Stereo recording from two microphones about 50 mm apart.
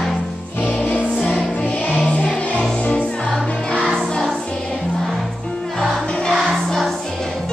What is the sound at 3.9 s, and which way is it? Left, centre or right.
Music, centre.